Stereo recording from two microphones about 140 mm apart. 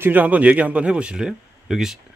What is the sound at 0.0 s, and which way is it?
Speech, 10° right (ahead or behind).